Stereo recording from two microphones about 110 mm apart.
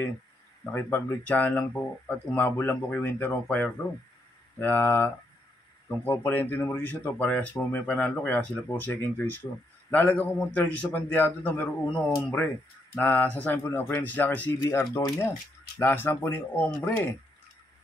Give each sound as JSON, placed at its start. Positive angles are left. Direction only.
{"t": 0.7, "sound": "speech", "side_deg": 20}